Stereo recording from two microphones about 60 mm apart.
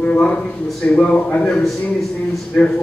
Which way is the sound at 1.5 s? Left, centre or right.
Centre.